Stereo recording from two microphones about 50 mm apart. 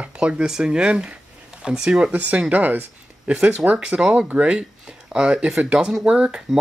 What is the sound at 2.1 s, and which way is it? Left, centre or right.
Speech, right.